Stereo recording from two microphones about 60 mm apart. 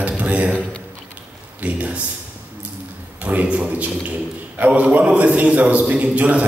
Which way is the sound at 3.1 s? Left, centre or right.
Right.